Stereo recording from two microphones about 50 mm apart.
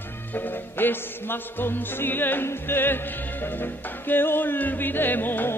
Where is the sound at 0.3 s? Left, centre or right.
Left.